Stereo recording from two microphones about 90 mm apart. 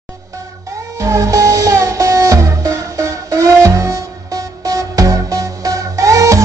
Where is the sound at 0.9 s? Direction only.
35° right (ahead or behind).